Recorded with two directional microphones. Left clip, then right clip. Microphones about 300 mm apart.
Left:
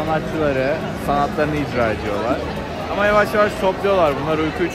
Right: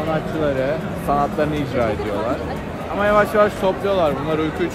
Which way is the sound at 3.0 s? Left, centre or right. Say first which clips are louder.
Even; centre.